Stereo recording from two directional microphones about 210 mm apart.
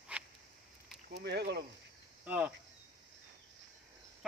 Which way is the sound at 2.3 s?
5° right (ahead or behind).